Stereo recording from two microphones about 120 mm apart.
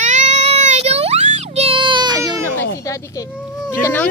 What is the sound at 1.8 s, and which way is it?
Baby cry, 40° right (ahead or behind).